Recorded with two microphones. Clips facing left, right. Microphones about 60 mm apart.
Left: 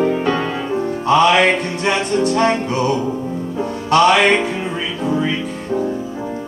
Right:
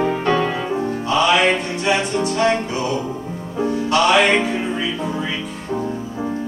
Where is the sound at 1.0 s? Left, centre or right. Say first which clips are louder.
Left 4 dB; left.